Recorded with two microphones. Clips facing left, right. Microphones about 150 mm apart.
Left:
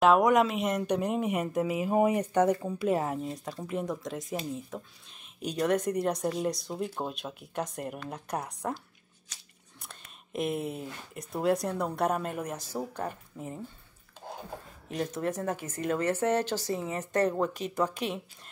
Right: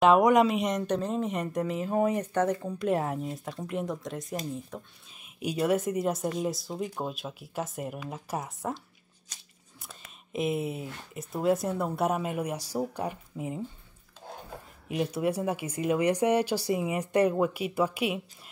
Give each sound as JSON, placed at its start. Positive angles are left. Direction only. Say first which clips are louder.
{"t": 0.0, "sound": "speech", "louder": "right 2 dB", "side_deg": 0}
{"t": 5.2, "sound": "speech", "louder": "right 1 dB", "side_deg": -10}
{"t": 14.9, "sound": "speech", "louder": "right 3 dB", "side_deg": -10}